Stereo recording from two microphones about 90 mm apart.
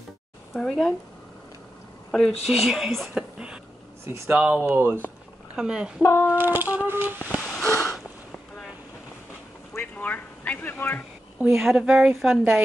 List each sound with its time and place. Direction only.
0.6 s speech: 5° left (ahead or behind)
2.0 s a sound: 5° left (ahead or behind)
2.4 s speech: 5° right (ahead or behind)
4.3 s speech: 15° right (ahead or behind)
5.6 s speech: 10° right (ahead or behind)
6.0 s speech: 25° left (ahead or behind)
6.3 s speech: 20° right (ahead or behind)
7.3 s wheeze: 5° left (ahead or behind)
7.6 s sniff: 30° left (ahead or behind)
9.8 s a man's voice: 20° left (ahead or behind)
11.4 s speech: 5° right (ahead or behind)